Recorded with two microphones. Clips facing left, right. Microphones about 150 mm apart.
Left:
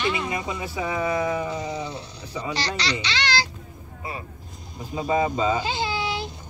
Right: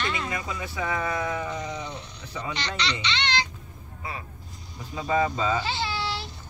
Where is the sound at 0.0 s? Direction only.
5° left (ahead or behind).